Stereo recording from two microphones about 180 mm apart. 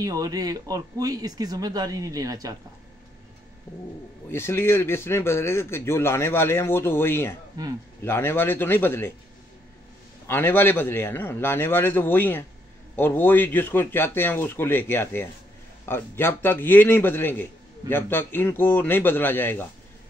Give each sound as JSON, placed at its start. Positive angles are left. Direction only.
{"t": 0.0, "sound": "speech", "side_deg": -20}
{"t": 4.3, "sound": "a man's voice", "side_deg": 15}
{"t": 7.6, "sound": "speech", "side_deg": -20}
{"t": 8.0, "sound": "a man's voice", "side_deg": 15}
{"t": 10.2, "sound": "a man's voice", "side_deg": 10}